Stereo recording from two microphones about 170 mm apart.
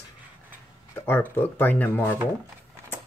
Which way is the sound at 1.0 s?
15° left (ahead or behind).